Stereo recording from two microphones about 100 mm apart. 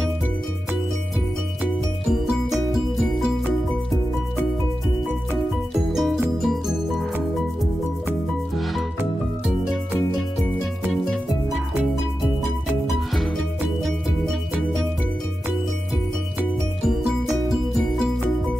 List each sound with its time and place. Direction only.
1.6 s music: 5° right (ahead or behind)
6.3 s music: centre (ahead or behind)